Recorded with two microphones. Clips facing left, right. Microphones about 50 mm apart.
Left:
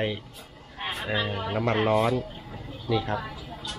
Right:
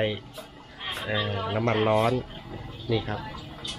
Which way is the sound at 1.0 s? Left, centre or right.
Centre.